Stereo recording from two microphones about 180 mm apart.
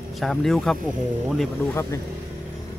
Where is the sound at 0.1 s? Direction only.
Centre (ahead or behind).